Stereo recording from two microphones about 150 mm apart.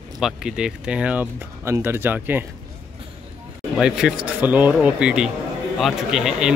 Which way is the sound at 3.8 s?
5° right (ahead or behind).